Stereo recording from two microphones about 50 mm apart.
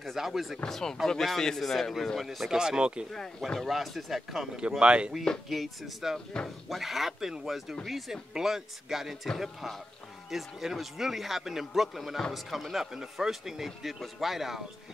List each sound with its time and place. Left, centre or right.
0.0 s a man's voice: centre
0.7 s a man's voice: centre
2.5 s speech: centre
3.1 s a man's voice: centre
4.6 s speech: right
5.5 s a man's voice: centre